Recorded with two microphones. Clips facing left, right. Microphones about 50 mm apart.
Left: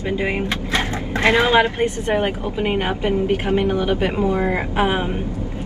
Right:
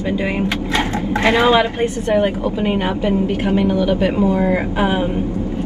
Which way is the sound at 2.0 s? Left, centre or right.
Left.